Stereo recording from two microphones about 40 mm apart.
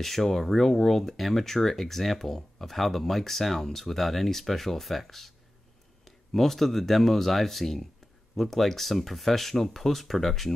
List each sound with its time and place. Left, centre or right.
0.0 s speech: centre